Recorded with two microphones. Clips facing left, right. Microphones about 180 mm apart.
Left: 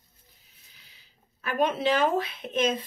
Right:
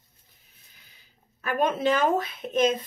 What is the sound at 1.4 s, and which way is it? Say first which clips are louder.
Speech: right 1 dB; 45° right (ahead or behind).